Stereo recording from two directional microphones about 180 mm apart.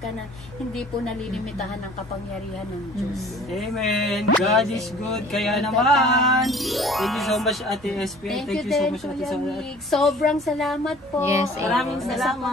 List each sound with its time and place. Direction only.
3.5 s speech: centre (ahead or behind)
11.2 s a woman's voice: 15° right (ahead or behind)
11.7 s speech: centre (ahead or behind)